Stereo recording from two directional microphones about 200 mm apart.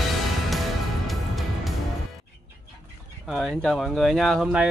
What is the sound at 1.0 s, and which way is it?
Music, centre (ahead or behind).